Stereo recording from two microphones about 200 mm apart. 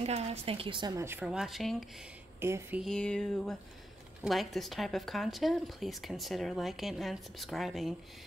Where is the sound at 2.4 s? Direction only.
10° right (ahead or behind).